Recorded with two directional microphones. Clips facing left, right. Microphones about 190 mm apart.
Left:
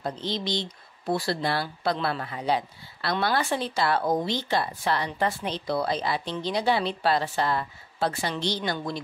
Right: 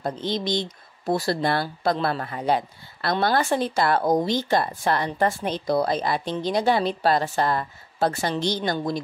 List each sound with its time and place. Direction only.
0.0 s speech: 50° right (ahead or behind)